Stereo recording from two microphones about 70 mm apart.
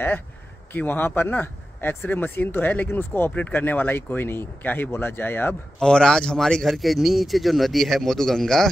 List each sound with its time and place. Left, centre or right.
0.7 s speech: left
5.8 s a man's voice: centre